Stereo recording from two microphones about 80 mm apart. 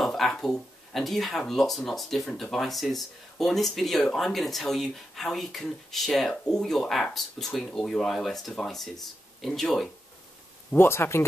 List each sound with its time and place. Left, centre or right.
0.0 s speech: centre
10.7 s speech: left